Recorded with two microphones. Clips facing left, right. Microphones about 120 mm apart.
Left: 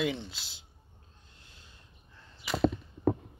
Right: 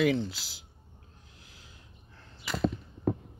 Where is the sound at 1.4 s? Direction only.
90° right.